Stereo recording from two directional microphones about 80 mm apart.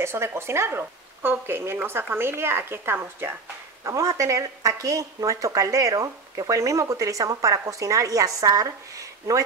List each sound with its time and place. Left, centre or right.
0.0 s speech: right
3.8 s speech: right